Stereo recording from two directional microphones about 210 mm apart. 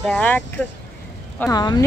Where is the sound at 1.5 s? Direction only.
20° left (ahead or behind).